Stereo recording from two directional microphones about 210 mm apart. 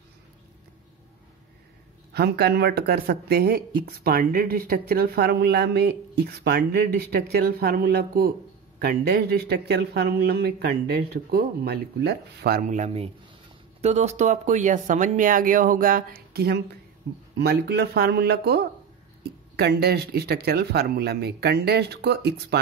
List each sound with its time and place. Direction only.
2.1 s speech: 50° right (ahead or behind)